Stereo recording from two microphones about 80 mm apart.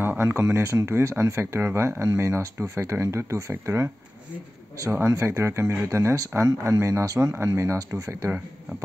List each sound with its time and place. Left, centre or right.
0.2 s speech: right
5.1 s speech: right